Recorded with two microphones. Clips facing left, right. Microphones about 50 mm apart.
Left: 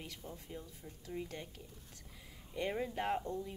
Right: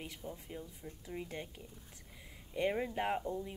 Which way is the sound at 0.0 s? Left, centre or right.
Centre.